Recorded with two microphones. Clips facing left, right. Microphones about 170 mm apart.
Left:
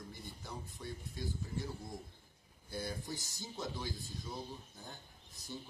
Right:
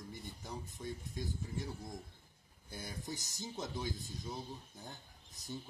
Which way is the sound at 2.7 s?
20° right (ahead or behind).